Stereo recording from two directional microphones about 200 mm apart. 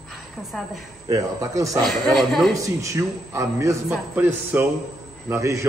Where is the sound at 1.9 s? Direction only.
Centre (ahead or behind).